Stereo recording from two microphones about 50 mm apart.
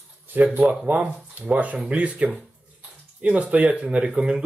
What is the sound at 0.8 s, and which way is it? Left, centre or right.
Speech, right.